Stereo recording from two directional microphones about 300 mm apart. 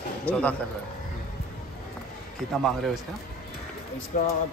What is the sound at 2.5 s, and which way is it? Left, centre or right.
Speech, centre.